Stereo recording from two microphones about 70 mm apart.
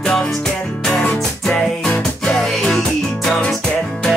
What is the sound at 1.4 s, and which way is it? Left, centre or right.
Music, centre.